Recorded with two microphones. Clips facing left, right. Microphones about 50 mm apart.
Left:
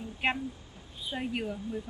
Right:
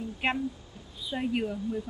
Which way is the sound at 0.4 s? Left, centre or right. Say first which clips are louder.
Right 5 dB; left.